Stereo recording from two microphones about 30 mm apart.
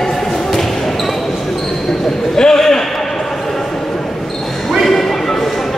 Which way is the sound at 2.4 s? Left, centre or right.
Centre.